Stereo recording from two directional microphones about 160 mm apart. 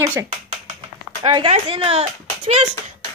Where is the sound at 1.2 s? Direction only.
35° right (ahead or behind).